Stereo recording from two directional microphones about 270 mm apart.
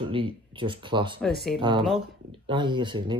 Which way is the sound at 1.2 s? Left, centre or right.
Centre.